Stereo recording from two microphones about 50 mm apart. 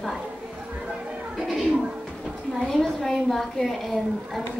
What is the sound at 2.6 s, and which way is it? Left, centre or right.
A woman's voice, centre.